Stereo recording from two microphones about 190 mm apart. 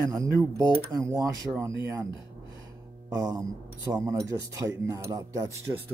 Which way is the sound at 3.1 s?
20° right (ahead or behind).